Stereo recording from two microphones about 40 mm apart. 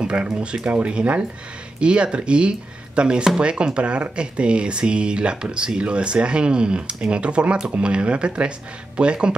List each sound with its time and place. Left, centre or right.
0.0 s speech: right